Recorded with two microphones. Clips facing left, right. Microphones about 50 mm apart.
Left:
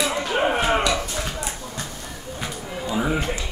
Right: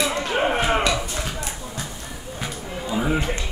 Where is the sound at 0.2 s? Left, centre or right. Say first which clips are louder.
Even; centre.